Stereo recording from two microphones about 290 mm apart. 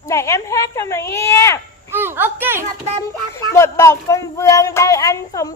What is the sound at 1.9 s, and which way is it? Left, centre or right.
Speech, centre.